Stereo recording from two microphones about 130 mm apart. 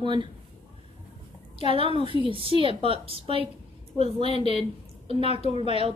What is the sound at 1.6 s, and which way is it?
A woman's voice, 45° right (ahead or behind).